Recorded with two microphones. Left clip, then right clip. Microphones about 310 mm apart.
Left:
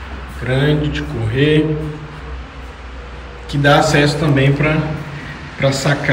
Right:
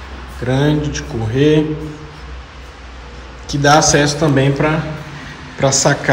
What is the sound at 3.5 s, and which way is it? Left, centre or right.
Speech, right.